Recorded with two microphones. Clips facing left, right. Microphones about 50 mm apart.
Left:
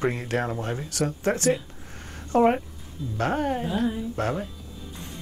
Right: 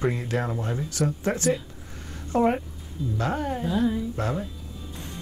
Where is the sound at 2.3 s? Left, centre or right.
Left.